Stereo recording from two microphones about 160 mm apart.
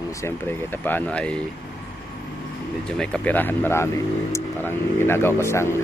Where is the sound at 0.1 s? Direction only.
15° left (ahead or behind).